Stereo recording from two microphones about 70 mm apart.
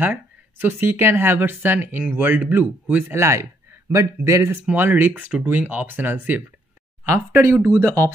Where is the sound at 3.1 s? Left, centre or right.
Right.